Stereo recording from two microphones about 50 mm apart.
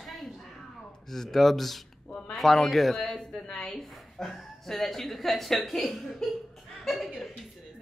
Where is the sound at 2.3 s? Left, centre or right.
Centre.